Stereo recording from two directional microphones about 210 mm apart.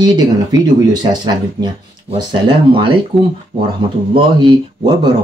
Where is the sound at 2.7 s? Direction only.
25° right (ahead or behind).